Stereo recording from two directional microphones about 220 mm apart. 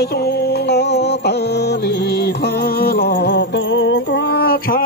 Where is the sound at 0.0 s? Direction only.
45° left (ahead or behind).